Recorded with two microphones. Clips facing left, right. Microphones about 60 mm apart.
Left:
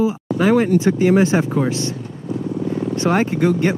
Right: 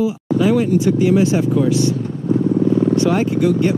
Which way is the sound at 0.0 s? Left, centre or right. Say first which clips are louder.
Right 1 dB; left.